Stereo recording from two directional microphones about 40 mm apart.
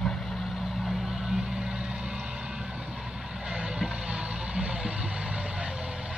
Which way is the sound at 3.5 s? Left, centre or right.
Right.